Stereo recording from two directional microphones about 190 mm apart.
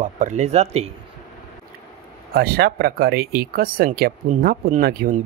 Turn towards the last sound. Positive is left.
turn(degrees=-50)  # may be behind; listen again after turning